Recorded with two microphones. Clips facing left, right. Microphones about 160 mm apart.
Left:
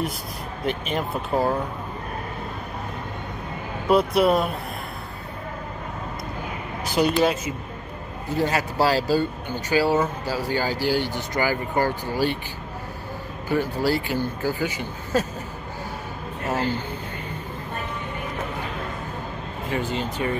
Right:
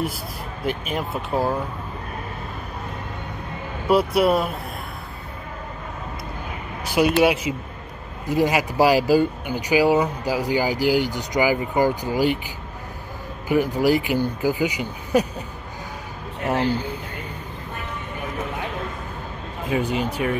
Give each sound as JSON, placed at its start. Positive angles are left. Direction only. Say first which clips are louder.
{"t": 0.7, "sound": "speech", "louder": "even", "side_deg": -5}
{"t": 3.8, "sound": "speech", "louder": "right 1 dB", "side_deg": 0}
{"t": 6.9, "sound": "speech", "louder": "right 3 dB", "side_deg": -5}
{"t": 13.5, "sound": "speech", "louder": "right 4 dB", "side_deg": -15}
{"t": 16.4, "sound": "speech", "louder": "right 3 dB", "side_deg": -15}
{"t": 19.7, "sound": "speech", "louder": "right 4 dB", "side_deg": -10}